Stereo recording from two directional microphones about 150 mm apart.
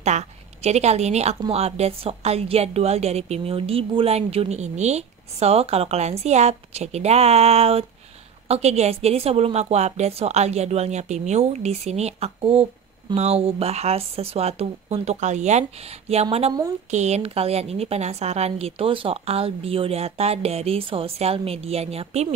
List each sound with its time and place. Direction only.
0.0 s a woman's voice: 50° right (ahead or behind)